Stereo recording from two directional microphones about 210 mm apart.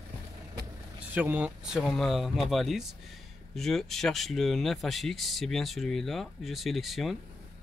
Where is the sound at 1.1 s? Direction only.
10° right (ahead or behind).